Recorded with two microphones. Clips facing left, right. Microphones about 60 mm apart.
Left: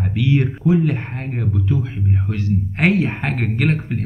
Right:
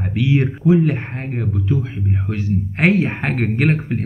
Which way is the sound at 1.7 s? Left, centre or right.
Centre.